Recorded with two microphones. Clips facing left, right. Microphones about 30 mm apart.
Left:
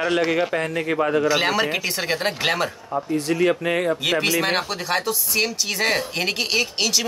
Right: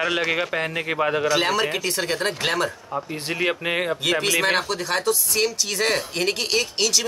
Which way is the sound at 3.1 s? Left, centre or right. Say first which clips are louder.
Left 5 dB; right.